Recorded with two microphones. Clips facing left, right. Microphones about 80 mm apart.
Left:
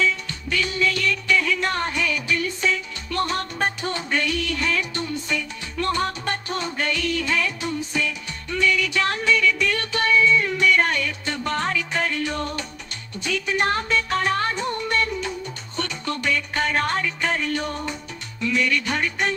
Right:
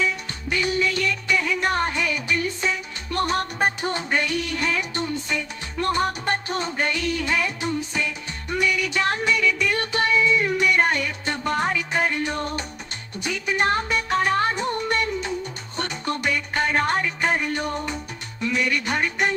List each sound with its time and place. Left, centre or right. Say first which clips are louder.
0.0 s music: left 2 dB; right